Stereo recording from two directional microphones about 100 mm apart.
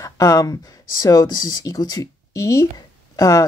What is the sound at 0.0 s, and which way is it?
Speech, 35° left (ahead or behind).